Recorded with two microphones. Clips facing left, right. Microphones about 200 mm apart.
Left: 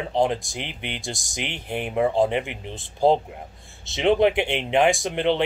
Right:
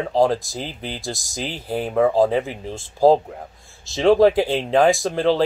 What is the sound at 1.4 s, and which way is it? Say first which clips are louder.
Speech: right 4 dB; 35° right (ahead or behind).